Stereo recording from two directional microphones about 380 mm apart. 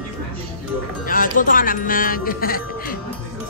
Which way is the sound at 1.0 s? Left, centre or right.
Left.